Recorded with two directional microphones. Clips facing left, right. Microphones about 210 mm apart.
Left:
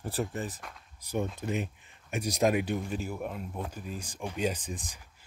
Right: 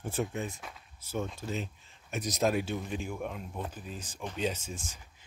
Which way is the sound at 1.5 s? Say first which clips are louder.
Left 4 dB; 60° left (ahead or behind).